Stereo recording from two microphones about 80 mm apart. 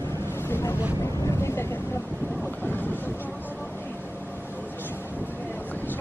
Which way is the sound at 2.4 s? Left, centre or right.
Left.